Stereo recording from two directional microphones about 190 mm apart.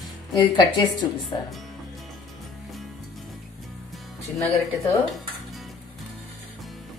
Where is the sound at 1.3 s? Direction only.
20° left (ahead or behind).